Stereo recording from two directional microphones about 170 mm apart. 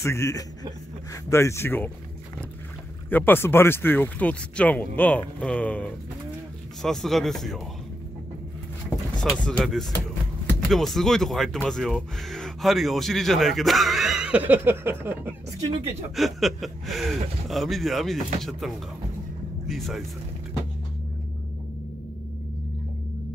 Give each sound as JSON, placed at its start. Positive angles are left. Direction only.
{"t": 0.0, "sound": "speech", "side_deg": 15}
{"t": 3.1, "sound": "speech", "side_deg": 10}
{"t": 9.2, "sound": "speech", "side_deg": 5}
{"t": 16.2, "sound": "speech", "side_deg": 0}